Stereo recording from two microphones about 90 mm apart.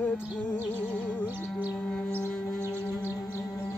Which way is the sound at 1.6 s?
25° right (ahead or behind).